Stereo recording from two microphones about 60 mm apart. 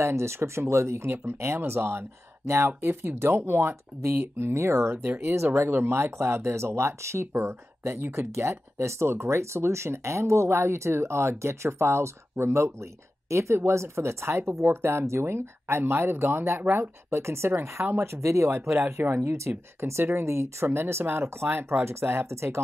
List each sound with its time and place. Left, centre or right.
0.0 s speech: right
18.7 s speech: right
19.2 s speech: right